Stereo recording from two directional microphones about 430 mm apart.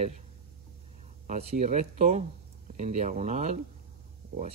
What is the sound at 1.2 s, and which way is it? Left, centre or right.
Speech, centre.